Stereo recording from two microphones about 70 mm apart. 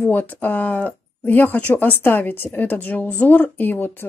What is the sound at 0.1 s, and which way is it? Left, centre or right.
Speech, left.